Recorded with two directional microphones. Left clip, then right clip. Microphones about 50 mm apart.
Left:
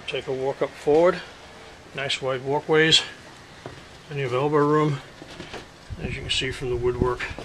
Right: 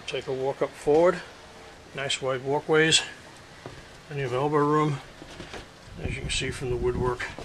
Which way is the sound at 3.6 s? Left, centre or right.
Centre.